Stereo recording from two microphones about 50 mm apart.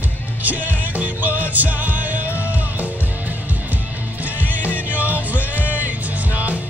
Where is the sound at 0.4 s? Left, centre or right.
Right.